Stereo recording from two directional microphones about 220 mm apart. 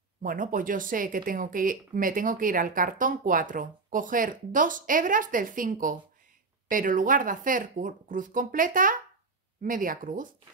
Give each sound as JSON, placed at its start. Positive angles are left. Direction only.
{"t": 0.2, "sound": "speech", "side_deg": -40}